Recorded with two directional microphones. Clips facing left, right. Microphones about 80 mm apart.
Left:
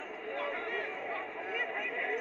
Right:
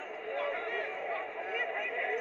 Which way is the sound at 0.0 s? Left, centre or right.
Centre.